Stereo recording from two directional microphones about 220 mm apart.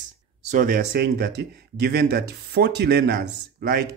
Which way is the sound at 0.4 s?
35° right (ahead or behind).